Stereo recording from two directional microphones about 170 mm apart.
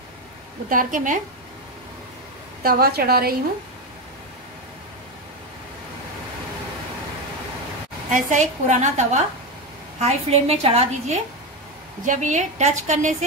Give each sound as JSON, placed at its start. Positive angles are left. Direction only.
{"t": 0.7, "sound": "a woman's voice", "side_deg": -55}
{"t": 2.6, "sound": "a woman's voice", "side_deg": -65}
{"t": 8.1, "sound": "a woman's voice", "side_deg": -50}
{"t": 12.0, "sound": "a woman's voice", "side_deg": -45}